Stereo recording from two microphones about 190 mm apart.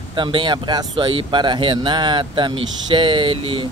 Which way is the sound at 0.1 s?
25° right (ahead or behind).